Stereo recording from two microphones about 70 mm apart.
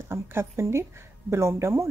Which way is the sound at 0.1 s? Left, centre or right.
Right.